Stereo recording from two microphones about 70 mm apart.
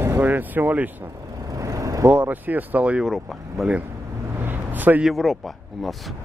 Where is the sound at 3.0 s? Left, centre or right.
Centre.